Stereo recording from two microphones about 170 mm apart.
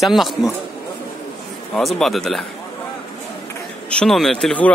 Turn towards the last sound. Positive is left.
turn(degrees=5)  # may be behind; listen again after turning